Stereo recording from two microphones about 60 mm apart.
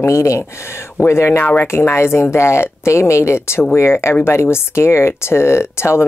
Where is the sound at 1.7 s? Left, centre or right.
Left.